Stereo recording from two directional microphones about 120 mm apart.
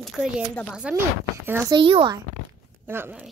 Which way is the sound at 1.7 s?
50° right (ahead or behind).